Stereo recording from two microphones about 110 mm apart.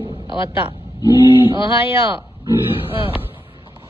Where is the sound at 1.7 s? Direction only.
55° left (ahead or behind).